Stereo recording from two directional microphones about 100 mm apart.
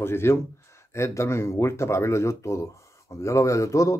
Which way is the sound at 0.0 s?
25° left (ahead or behind).